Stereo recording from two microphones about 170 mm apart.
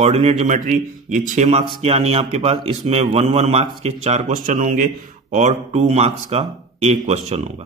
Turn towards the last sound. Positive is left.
turn(degrees=-40)  # may be behind; listen again after turning